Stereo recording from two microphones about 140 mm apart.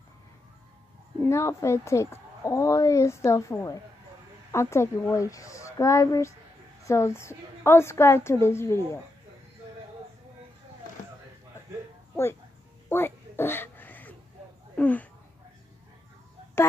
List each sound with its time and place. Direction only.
1.2 s speech: 20° left (ahead or behind)
12.9 s a sound: 15° left (ahead or behind)
14.8 s speech: 10° left (ahead or behind)